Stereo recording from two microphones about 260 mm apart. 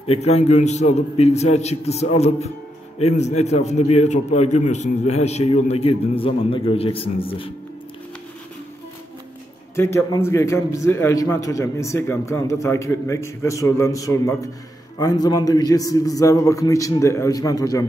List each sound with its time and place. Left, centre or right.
0.2 s a man's voice: left
9.8 s a man's voice: centre